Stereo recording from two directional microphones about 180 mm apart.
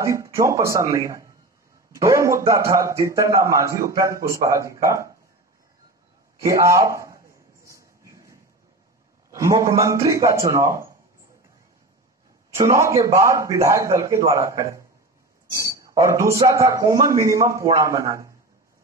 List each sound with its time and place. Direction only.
0.0 s a man's voice: 15° right (ahead or behind)
6.4 s a man's voice: 15° right (ahead or behind)
7.6 s a sound: 15° right (ahead or behind)
9.3 s a man's voice: 20° right (ahead or behind)
12.6 s a man's voice: 15° right (ahead or behind)